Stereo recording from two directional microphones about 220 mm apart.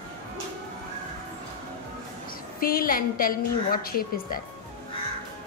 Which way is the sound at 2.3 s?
40° left (ahead or behind).